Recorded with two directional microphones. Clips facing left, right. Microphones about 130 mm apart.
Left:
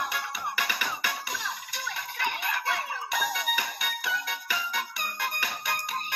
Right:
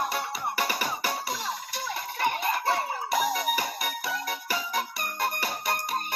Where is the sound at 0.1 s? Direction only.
40° right (ahead or behind).